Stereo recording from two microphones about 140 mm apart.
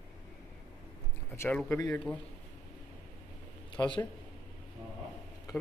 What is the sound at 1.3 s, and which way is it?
Speech, 15° left (ahead or behind).